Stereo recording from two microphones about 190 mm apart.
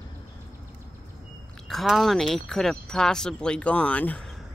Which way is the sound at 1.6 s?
Centre (ahead or behind).